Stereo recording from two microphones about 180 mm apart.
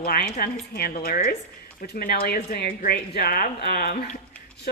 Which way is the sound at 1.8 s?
60° left (ahead or behind).